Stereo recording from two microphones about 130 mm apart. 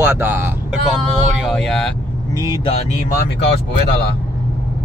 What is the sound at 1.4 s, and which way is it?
Speech, 5° left (ahead or behind).